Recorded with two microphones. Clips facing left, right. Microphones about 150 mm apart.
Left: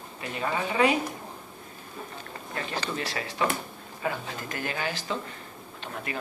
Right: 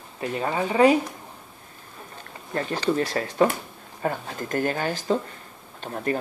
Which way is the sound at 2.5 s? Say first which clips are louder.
Right 8 dB; 45° right (ahead or behind).